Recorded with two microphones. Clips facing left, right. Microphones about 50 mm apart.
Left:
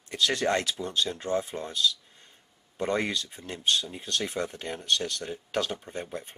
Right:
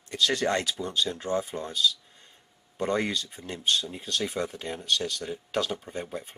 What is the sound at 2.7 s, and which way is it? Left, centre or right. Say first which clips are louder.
Speech: right 1 dB; centre.